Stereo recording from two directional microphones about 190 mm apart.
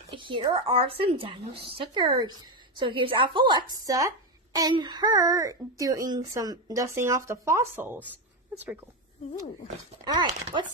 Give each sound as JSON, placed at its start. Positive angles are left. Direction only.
{"t": 0.1, "sound": "a woman's voice", "side_deg": -25}
{"t": 10.0, "sound": "speech", "side_deg": -25}